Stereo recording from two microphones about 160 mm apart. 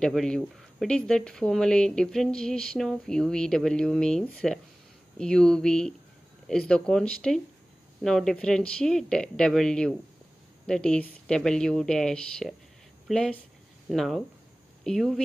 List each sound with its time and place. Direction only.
0.0 s speech: 5° left (ahead or behind)